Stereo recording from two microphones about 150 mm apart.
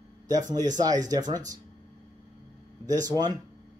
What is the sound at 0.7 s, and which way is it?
Speech, 25° right (ahead or behind).